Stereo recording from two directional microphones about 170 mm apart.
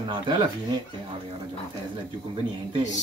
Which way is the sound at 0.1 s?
25° right (ahead or behind).